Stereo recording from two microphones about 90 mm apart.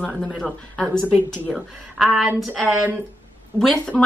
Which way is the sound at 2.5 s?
20° right (ahead or behind).